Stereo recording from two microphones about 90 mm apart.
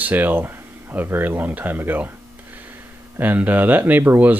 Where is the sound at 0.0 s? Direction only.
20° right (ahead or behind).